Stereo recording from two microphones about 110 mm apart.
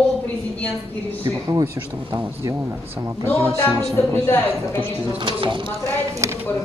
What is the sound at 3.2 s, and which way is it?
Music, 25° right (ahead or behind).